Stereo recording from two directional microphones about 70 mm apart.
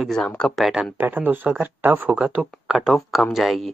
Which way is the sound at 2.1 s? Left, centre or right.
Centre.